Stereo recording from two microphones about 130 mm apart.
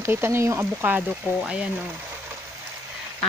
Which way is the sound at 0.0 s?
20° right (ahead or behind).